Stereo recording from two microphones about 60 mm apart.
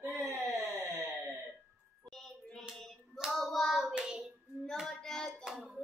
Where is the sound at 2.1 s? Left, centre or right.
Centre.